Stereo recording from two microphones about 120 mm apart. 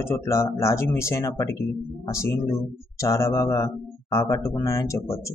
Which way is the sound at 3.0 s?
25° left (ahead or behind).